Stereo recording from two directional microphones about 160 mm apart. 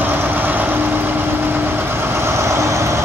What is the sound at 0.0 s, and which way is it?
Vehicle, 10° right (ahead or behind).